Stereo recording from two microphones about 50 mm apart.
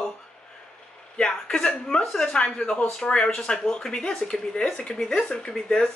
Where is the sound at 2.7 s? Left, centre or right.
Centre.